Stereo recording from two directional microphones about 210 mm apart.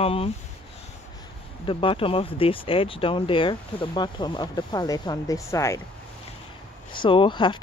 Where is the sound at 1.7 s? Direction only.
25° left (ahead or behind).